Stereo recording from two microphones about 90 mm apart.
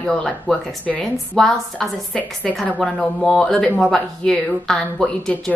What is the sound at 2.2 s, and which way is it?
Speech, 15° left (ahead or behind).